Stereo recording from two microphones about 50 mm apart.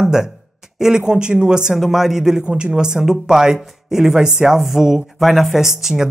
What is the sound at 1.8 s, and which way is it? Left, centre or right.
Speech, centre.